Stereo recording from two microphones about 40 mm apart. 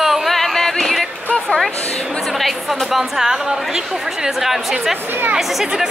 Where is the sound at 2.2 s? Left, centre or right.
Centre.